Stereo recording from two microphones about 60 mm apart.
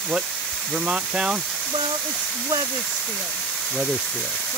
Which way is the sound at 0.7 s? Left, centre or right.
Centre.